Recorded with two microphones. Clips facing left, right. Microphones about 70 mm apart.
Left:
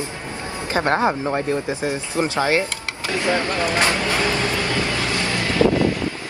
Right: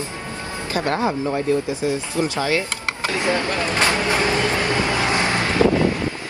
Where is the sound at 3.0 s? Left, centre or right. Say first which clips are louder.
Left 1 dB; right.